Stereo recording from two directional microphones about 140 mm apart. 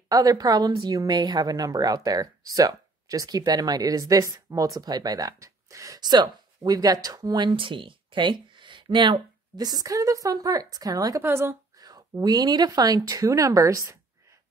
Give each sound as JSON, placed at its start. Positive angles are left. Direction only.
{"t": 0.1, "sound": "speech", "side_deg": -25}